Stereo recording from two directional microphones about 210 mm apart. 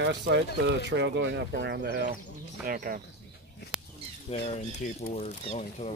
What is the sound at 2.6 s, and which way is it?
Speech, 40° right (ahead or behind).